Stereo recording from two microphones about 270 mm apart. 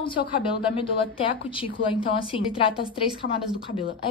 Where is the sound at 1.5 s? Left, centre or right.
Centre.